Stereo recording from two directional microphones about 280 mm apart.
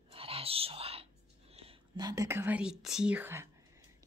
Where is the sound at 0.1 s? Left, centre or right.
Centre.